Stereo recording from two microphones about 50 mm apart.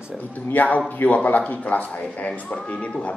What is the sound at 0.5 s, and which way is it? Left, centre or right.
A man's voice, left.